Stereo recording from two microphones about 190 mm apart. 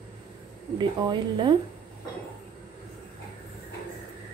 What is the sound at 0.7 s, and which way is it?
Speech, 25° right (ahead or behind).